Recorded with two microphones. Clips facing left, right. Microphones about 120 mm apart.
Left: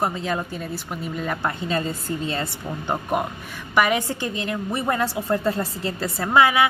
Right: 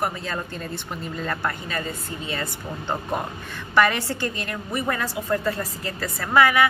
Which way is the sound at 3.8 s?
15° left (ahead or behind).